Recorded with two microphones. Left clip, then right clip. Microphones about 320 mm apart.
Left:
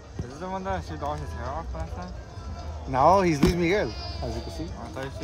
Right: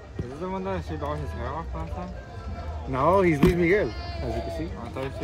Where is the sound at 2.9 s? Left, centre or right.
Left.